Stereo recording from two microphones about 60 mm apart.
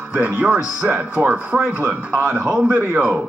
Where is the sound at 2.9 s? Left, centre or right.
Centre.